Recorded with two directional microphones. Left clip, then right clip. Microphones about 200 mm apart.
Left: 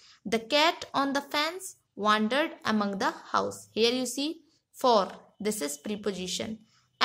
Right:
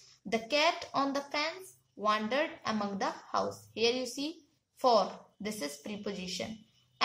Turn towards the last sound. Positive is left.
turn(degrees=50)  # may be behind; listen again after turning